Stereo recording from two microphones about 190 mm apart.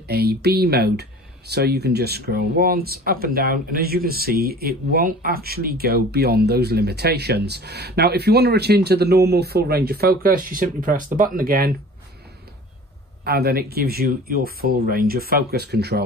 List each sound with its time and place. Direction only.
0.1 s speech: 55° right (ahead or behind)
13.2 s speech: 55° right (ahead or behind)